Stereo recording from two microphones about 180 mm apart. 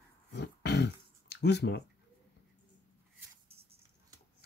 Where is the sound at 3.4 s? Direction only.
35° right (ahead or behind).